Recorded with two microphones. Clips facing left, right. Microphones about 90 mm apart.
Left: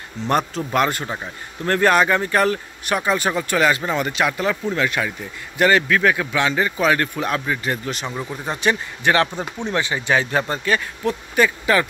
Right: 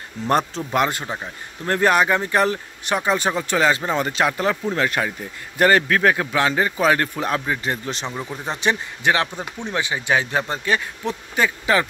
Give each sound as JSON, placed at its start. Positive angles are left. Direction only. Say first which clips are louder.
{"t": 0.4, "sound": "speech", "louder": "left 1 dB", "side_deg": 5}
{"t": 0.7, "sound": "speech", "louder": "left 1 dB", "side_deg": -20}
{"t": 1.0, "sound": "a man's voice", "louder": "left 1 dB", "side_deg": -5}
{"t": 8.1, "sound": "speech", "louder": "left 1 dB", "side_deg": 0}
{"t": 8.5, "sound": "speech", "louder": "left 1 dB", "side_deg": -25}
{"t": 9.7, "sound": "speech", "louder": "left 1 dB", "side_deg": -15}